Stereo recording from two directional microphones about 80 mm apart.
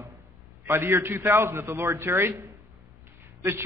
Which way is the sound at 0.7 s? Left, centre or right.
Right.